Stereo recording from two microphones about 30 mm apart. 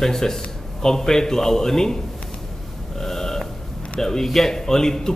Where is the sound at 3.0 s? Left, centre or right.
Centre.